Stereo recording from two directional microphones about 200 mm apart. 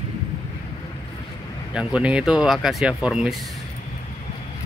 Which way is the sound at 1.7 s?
5° right (ahead or behind).